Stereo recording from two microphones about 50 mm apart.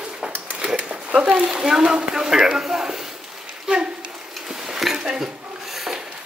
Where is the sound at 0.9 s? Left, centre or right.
Right.